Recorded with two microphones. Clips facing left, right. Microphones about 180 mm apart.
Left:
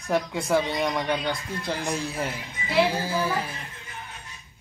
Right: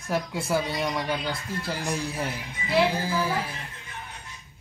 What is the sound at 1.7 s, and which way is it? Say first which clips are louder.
Speech: even; 15° left (ahead or behind).